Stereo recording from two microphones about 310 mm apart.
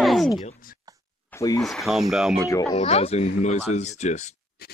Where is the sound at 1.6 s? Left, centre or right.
Centre.